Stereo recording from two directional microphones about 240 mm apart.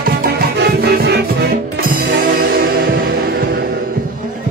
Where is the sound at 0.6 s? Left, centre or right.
Right.